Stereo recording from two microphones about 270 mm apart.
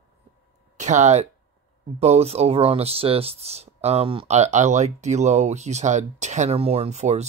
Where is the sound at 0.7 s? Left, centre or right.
Right.